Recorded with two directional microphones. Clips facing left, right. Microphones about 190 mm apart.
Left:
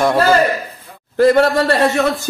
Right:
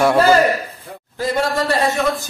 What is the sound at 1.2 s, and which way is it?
Speech, 65° left (ahead or behind).